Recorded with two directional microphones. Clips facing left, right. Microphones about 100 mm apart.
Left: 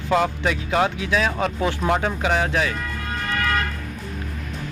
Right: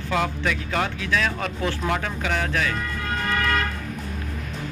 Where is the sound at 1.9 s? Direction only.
25° left (ahead or behind).